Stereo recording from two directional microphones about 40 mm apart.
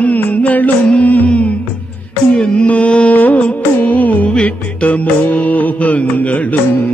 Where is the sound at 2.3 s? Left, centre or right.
Left.